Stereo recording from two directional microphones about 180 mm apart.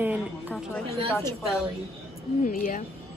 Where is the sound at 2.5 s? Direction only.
50° left (ahead or behind).